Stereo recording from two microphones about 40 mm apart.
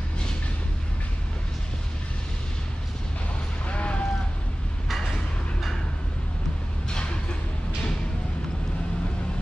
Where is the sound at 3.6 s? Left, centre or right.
Left.